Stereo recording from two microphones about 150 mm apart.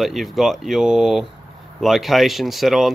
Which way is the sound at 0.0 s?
Centre (ahead or behind).